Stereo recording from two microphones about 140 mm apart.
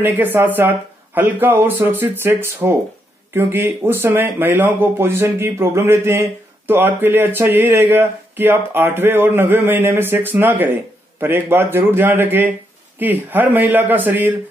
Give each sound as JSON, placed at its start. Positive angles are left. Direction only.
{"t": 0.0, "sound": "speech", "side_deg": -15}